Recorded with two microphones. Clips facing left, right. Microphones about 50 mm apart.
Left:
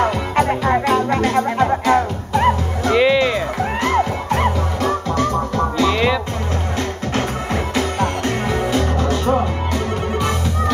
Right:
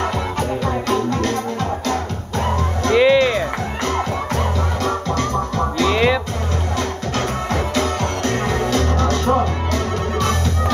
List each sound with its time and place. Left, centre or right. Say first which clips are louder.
0.8 s music: left 3 dB; centre
3.0 s music: right 2 dB; centre
3.8 s music: left 3 dB; centre
5.9 s music: right 3 dB; centre
7.7 s music: left 1 dB; centre